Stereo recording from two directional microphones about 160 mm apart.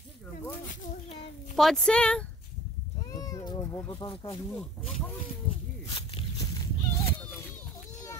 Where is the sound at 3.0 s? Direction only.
20° left (ahead or behind).